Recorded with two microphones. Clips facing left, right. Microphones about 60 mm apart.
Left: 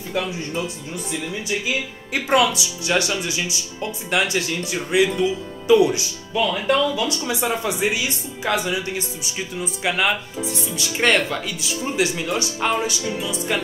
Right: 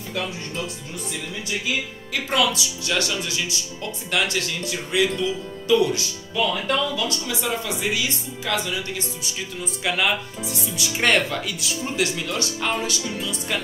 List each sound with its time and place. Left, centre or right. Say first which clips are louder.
2.1 s speech: left 4 dB; left
9.8 s speech: left 1 dB; centre